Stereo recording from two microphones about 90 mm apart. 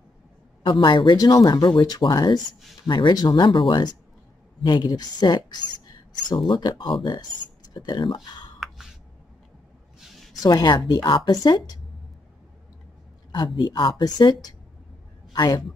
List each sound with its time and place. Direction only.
0.7 s a woman's voice: 60° left (ahead or behind)
9.9 s a sound: centre (ahead or behind)
10.4 s a woman's voice: 50° left (ahead or behind)
13.3 s speech: 55° left (ahead or behind)
14.0 s a woman's voice: 45° left (ahead or behind)